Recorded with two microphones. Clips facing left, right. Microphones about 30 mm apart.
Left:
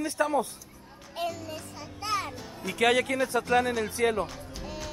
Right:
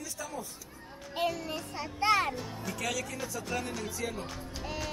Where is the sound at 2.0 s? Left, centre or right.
Right.